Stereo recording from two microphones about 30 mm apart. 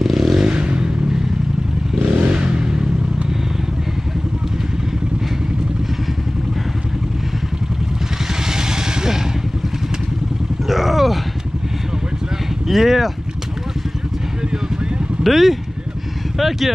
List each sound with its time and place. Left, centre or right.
0.0 s vehicle: centre
0.6 s a sound: right
2.0 s vehicle: right
8.5 s vehicle: right
10.7 s groan: centre
12.6 s speech: centre
15.2 s speech: centre